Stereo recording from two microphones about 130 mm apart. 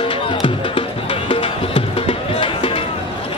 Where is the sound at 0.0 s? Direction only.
40° left (ahead or behind).